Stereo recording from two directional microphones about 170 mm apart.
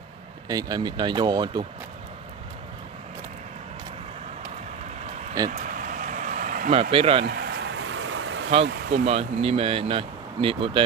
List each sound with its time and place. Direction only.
0.5 s speech: 25° right (ahead or behind)
5.5 s vehicle: 50° right (ahead or behind)
6.7 s speech: 35° right (ahead or behind)
7.2 s a sound: 75° right (ahead or behind); by 8.5 s 90° right
8.9 s speech: 35° right (ahead or behind)